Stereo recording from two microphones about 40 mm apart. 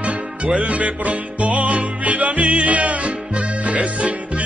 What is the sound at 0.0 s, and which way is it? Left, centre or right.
Music, right.